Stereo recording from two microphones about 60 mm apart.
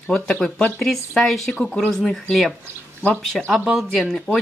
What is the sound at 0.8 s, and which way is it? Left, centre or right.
Speech, centre.